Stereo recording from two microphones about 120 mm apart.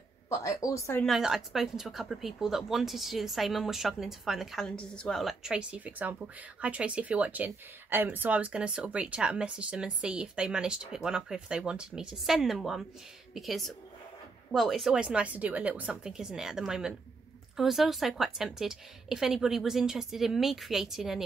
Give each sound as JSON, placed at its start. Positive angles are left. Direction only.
{"t": 0.3, "sound": "a woman's voice", "side_deg": 25}
{"t": 1.0, "sound": "speech", "side_deg": -5}